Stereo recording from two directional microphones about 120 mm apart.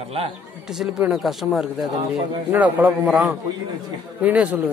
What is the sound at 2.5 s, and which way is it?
Speech, 15° right (ahead or behind).